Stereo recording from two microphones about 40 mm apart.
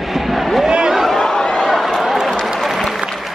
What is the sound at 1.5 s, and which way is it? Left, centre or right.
Run, centre.